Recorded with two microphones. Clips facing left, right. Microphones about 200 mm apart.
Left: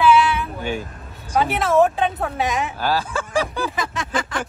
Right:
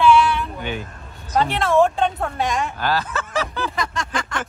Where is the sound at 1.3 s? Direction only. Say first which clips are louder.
Even; 5° left (ahead or behind).